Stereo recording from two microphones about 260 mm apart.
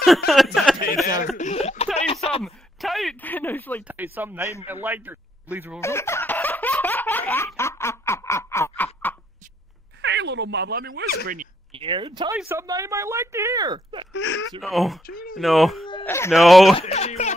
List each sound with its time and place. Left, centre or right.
0.6 s a sound: centre
1.0 s a sound: left
2.4 s a sound: centre
3.8 s speech: centre
5.8 s baby laughter: centre
10.0 s speech: right
11.7 s speech: centre
14.1 s speech: left
14.6 s speech: centre
15.0 s speech: left
15.3 s speech: centre
15.9 s a sound: centre
16.3 s speech: centre
16.7 s speech: left